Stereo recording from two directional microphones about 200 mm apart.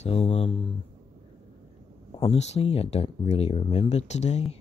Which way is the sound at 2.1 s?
30° left (ahead or behind).